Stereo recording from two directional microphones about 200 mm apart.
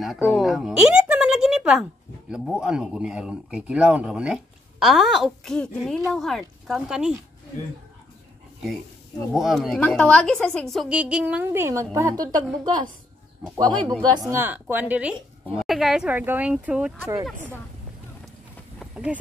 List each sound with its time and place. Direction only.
0.0 s a woman's voice: centre (ahead or behind)
9.3 s speech: centre (ahead or behind); by 14.2 s 20° right (ahead or behind)
14.3 s a woman's voice: 10° right (ahead or behind)
18.8 s insect: 5° right (ahead or behind)